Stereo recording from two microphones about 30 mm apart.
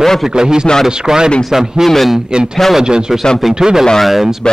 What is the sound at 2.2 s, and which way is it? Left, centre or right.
A man's voice, right.